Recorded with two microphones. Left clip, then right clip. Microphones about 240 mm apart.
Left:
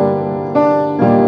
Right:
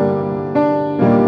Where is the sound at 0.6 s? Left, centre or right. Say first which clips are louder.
Left 3 dB; left.